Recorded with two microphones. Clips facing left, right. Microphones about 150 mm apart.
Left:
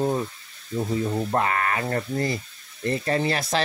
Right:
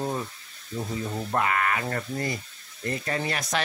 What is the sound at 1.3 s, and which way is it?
Speech, 30° left (ahead or behind).